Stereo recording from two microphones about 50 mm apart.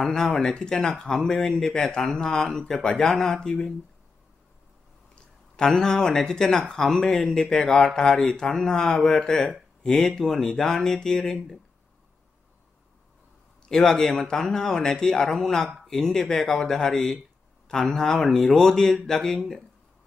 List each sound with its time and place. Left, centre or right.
0.0 s speech: centre
5.1 s speech: centre
11.3 s speech: centre
13.7 s speech: centre